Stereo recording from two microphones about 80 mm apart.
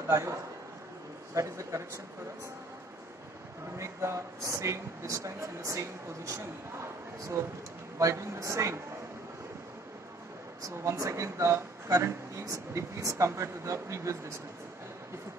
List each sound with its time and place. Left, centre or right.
0.1 s speech: right
3.7 s speech: right
8.0 s speech: right
10.6 s speech: right